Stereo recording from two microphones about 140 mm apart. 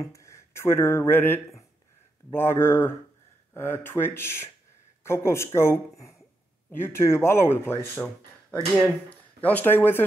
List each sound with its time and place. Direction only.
0.0 s speech: 20° left (ahead or behind)